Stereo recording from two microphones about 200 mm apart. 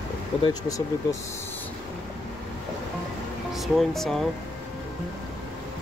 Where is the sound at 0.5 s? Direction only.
15° left (ahead or behind).